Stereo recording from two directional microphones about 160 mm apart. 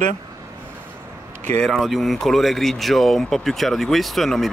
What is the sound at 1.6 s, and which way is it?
Speech, centre (ahead or behind).